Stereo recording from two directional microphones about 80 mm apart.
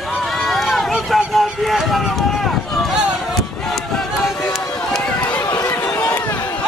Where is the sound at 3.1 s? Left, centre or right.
Centre.